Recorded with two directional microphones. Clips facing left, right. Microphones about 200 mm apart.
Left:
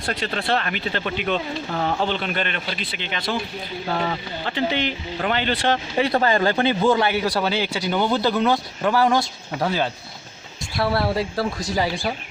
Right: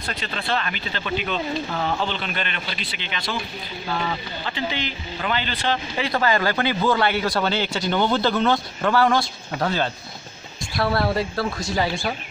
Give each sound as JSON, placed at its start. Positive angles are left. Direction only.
{"t": 0.0, "sound": "speech", "side_deg": 65}
{"t": 6.1, "sound": "speech", "side_deg": 30}